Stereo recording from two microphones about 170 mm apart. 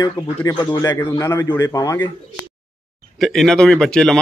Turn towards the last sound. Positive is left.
turn(degrees=5)  # may be behind; listen again after turning